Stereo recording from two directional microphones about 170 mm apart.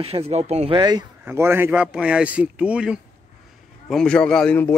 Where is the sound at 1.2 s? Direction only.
15° right (ahead or behind).